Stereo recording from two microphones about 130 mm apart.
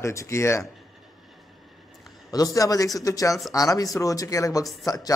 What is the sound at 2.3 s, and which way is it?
A man's voice, 25° left (ahead or behind).